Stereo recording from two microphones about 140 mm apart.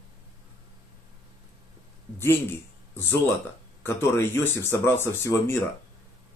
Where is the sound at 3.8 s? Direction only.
15° left (ahead or behind).